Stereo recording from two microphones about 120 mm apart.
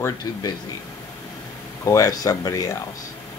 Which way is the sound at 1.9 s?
30° left (ahead or behind).